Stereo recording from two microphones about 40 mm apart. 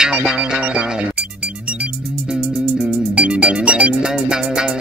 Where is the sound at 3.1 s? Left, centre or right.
Right.